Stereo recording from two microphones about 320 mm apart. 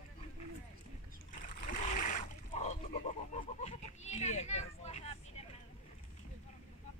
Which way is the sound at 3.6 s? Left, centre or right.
Left.